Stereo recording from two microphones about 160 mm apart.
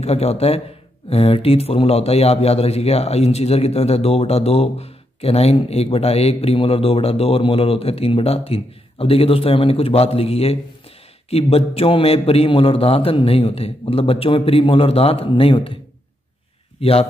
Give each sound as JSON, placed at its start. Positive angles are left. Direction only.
{"t": 0.0, "sound": "a man's voice", "side_deg": 40}
{"t": 16.8, "sound": "a man's voice", "side_deg": 40}